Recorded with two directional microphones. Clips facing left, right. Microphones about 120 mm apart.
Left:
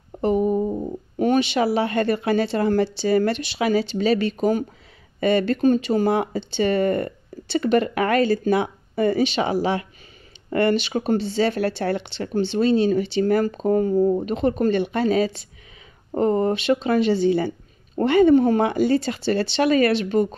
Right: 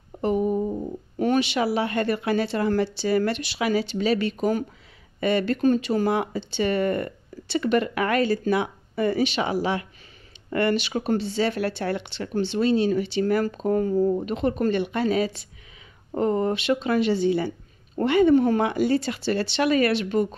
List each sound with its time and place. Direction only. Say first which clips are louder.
0.2 s humming: left 3 dB; 35° left (ahead or behind)
1.2 s speech: left 3 dB; 25° left (ahead or behind)